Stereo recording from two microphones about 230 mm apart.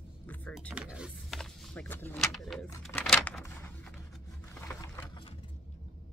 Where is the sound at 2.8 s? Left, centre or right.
Centre.